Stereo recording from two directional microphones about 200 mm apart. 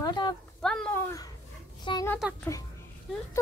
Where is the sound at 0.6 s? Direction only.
5° left (ahead or behind).